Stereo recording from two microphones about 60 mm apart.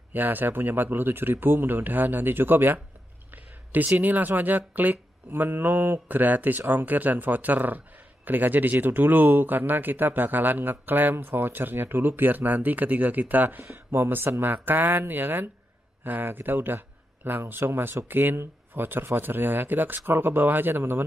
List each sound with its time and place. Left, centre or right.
0.1 s speech: right